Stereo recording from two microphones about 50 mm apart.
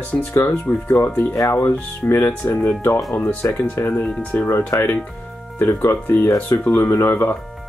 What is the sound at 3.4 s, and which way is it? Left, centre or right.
Speech, left.